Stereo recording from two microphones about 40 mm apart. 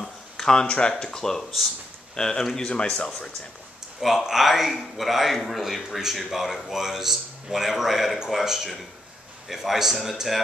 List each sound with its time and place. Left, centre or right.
0.4 s a sound: centre
0.7 s speech: left
4.0 s a man's voice: centre